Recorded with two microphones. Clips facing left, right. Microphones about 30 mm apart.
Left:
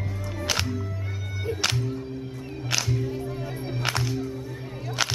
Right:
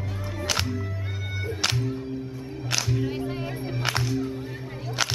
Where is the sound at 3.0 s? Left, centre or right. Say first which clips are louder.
Right 2 dB; right.